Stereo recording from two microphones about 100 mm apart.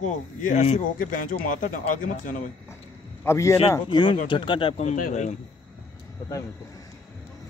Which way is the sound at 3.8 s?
50° left (ahead or behind).